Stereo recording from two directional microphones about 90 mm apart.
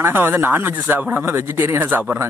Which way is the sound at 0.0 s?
25° right (ahead or behind).